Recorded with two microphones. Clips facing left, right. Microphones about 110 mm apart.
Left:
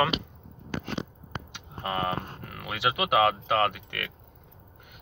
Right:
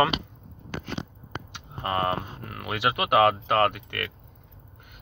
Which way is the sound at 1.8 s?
Centre (ahead or behind).